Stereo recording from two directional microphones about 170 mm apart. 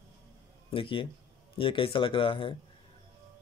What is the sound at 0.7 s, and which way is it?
Speech, 30° left (ahead or behind).